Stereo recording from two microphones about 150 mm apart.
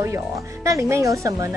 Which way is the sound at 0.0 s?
20° right (ahead or behind).